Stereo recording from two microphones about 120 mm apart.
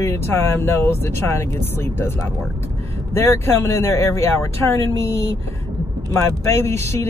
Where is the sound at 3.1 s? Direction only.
20° left (ahead or behind).